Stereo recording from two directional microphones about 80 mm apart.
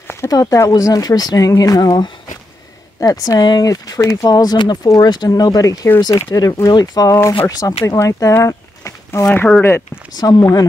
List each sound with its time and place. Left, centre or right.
0.3 s speech: left
9.6 s speech: left
10.1 s speech: left